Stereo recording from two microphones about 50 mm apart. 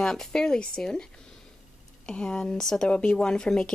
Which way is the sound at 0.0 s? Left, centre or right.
Centre.